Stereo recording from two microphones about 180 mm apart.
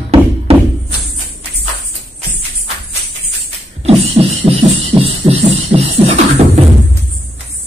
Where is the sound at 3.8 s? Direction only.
35° right (ahead or behind).